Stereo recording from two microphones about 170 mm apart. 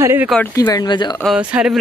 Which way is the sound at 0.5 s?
20° left (ahead or behind).